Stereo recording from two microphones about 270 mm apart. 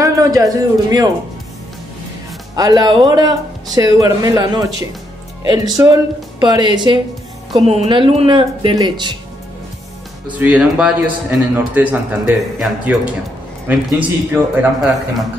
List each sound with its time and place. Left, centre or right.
0.0 s a sound: centre
2.5 s speech: centre
10.4 s a man's voice: centre